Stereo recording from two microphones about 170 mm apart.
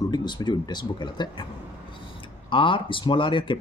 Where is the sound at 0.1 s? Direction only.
25° left (ahead or behind).